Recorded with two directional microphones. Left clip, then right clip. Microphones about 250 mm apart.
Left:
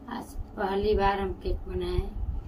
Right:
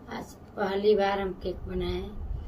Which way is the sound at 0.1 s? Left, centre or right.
Centre.